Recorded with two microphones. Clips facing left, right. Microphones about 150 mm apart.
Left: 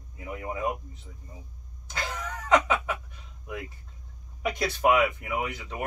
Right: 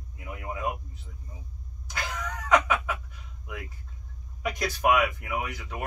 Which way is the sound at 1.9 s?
25° left (ahead or behind).